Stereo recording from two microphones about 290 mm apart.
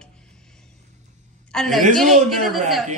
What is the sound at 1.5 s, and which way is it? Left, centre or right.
A woman's voice, centre.